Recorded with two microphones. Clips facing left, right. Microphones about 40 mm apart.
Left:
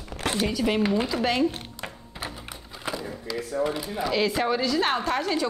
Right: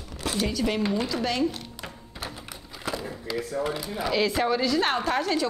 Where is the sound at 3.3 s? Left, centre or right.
Centre.